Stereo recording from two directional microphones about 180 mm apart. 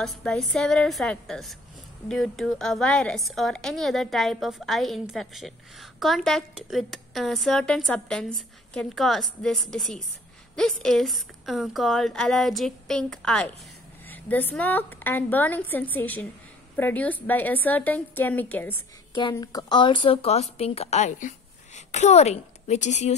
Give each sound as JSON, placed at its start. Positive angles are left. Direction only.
{"t": 0.0, "sound": "a woman's voice", "side_deg": 5}
{"t": 19.3, "sound": "speech", "side_deg": 20}